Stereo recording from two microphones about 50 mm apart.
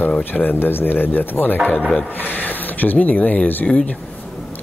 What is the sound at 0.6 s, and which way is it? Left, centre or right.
Speech, left.